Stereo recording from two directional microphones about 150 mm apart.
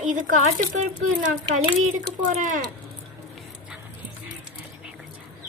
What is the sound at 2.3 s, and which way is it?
Speech, 60° right (ahead or behind).